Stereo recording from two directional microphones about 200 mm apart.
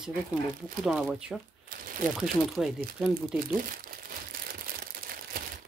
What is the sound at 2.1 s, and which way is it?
Speech, 5° right (ahead or behind).